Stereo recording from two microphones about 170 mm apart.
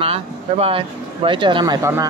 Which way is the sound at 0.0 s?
35° right (ahead or behind).